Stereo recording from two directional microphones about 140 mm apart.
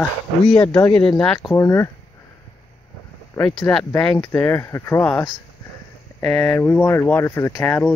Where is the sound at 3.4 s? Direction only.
5° left (ahead or behind).